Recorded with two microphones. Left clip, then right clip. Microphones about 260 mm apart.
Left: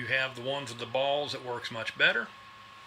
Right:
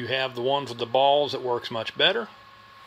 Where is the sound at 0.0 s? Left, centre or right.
Right.